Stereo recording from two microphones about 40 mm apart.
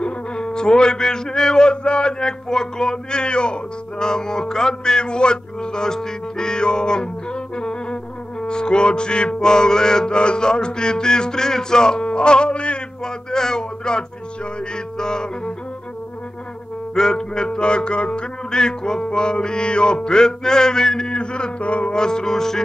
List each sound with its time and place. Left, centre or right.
0.0 s a sound: left
13.0 s music: centre
16.9 s music: centre; by 21.9 s left
21.9 s music: centre